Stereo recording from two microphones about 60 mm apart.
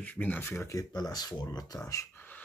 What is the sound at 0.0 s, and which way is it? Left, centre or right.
Speech, left.